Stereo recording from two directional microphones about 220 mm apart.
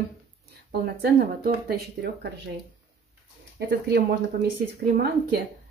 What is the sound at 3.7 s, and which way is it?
Speech, 50° right (ahead or behind).